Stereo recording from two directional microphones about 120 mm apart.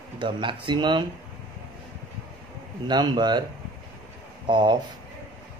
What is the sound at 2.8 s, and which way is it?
Speech, 35° right (ahead or behind).